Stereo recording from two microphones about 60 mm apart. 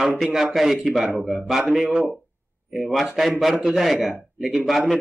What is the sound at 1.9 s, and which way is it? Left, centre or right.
Speech, right.